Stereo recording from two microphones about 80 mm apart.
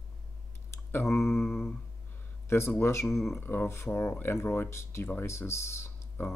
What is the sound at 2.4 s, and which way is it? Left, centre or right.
Speech, left.